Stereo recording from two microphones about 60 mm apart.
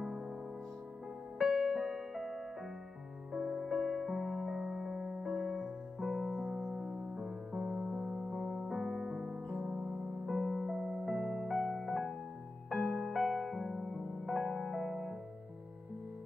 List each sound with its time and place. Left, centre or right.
0.0 s music: centre
1.4 s music: centre